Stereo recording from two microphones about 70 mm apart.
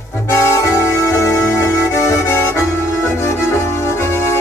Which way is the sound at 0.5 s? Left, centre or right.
Left.